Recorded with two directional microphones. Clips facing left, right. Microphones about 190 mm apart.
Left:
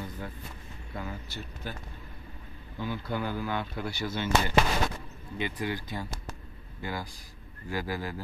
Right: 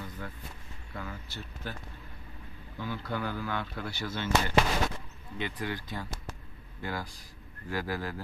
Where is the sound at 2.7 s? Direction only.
15° left (ahead or behind).